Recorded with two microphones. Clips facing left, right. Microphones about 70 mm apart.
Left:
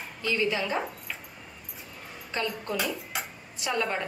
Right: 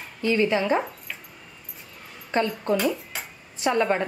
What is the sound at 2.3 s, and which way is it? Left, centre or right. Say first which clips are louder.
A woman's voice: right 8 dB; right.